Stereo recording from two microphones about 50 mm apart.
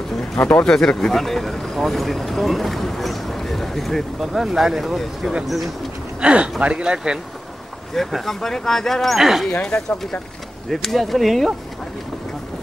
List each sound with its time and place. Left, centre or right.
0.7 s speech: centre
6.2 s speech: right
7.9 s speech: centre
9.2 s speech: centre
9.5 s speech: left
10.7 s speech: centre